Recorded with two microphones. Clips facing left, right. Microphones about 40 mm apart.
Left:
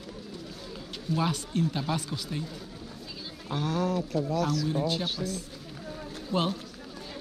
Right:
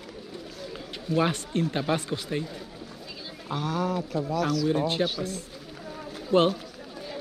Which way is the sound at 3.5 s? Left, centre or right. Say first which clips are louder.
Right 1 dB; centre.